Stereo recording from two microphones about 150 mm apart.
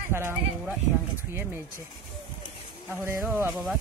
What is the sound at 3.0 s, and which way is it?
Speech, 15° right (ahead or behind).